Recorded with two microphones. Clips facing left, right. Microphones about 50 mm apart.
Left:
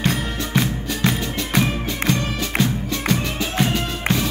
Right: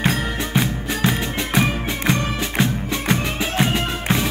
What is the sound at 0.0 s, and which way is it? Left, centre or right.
Music, centre.